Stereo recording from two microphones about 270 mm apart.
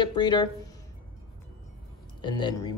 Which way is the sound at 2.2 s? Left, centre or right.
Centre.